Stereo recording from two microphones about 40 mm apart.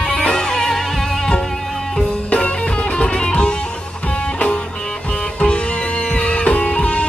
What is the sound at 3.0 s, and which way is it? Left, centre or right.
Music, left.